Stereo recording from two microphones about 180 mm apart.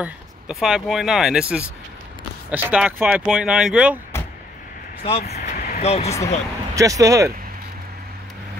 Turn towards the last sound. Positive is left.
turn(degrees=-20)  # may be behind; listen again after turning